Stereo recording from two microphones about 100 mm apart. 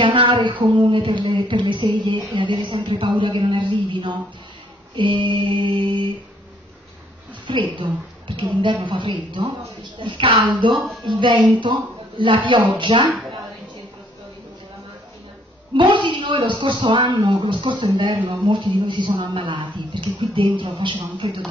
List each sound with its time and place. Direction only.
0.0 s a sound: 55° right (ahead or behind)
4.9 s female singing: 50° right (ahead or behind)
7.7 s a woman's voice: 55° right (ahead or behind)
15.7 s speech: 55° right (ahead or behind)